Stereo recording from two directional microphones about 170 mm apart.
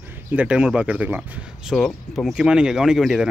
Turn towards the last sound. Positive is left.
turn(degrees=-5)  # may be behind; listen again after turning